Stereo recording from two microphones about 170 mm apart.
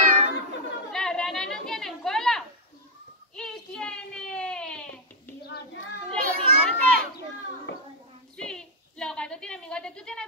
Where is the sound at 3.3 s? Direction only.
5° left (ahead or behind).